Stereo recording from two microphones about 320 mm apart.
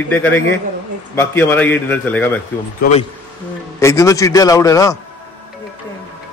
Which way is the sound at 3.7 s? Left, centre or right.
Centre.